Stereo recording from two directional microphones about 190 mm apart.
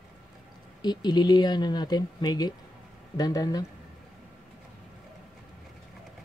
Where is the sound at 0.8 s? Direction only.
20° left (ahead or behind).